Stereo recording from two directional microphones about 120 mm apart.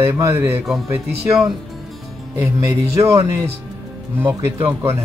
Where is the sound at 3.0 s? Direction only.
25° right (ahead or behind).